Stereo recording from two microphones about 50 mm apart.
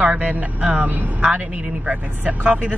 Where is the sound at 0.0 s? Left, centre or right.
Right.